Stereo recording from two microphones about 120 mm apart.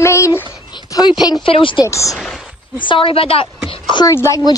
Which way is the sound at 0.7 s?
35° left (ahead or behind).